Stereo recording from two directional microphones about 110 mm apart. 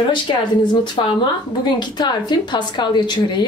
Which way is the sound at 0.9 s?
45° left (ahead or behind).